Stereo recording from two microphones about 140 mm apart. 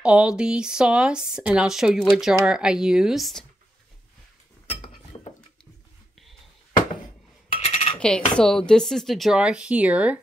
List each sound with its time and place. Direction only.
0.0 s speech: 5° right (ahead or behind)
4.8 s chink: 40° left (ahead or behind)
7.6 s coin: 55° left (ahead or behind)
8.0 s speech: 5° left (ahead or behind); by 10.2 s 10° right (ahead or behind)